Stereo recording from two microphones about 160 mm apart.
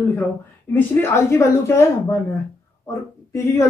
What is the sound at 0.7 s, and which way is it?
A woman's voice, 15° left (ahead or behind).